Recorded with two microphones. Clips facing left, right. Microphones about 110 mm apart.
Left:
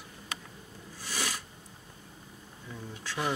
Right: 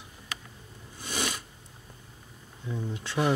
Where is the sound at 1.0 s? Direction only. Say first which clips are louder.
Right 3 dB; 20° right (ahead or behind).